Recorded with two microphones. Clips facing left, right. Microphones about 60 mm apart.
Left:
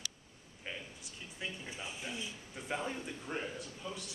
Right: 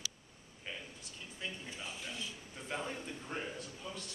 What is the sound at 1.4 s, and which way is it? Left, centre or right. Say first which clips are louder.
A man's voice: left 1 dB; centre.